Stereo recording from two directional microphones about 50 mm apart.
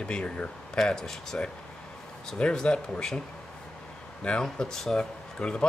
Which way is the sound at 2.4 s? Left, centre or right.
Centre.